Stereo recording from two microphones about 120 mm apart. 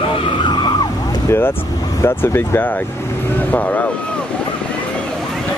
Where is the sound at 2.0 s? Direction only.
20° left (ahead or behind).